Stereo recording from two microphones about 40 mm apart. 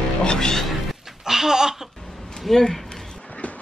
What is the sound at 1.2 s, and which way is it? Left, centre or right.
Speech, centre.